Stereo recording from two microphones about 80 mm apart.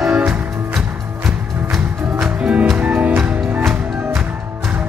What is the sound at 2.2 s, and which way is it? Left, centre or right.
Music, centre.